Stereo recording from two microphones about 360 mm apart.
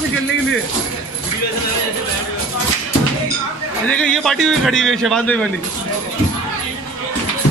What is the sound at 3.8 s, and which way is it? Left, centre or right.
A man's voice, centre.